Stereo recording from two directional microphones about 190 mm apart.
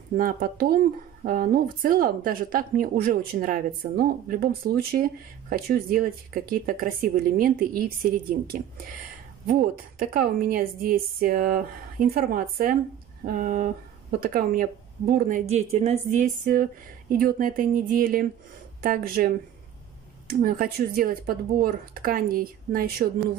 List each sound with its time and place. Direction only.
0.2 s speech: 50° right (ahead or behind)
15.5 s speech: 35° right (ahead or behind); by 23.0 s 50° right (ahead or behind)